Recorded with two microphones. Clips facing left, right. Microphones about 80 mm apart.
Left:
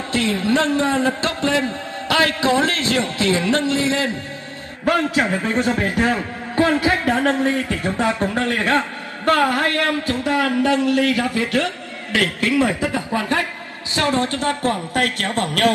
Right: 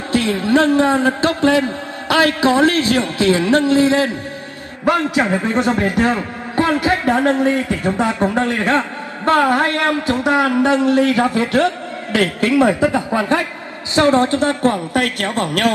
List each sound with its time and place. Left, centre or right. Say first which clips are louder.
0.1 s a man's voice: right 4 dB; right